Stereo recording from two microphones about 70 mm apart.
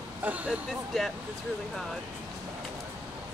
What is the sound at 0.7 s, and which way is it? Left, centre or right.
Speech, centre.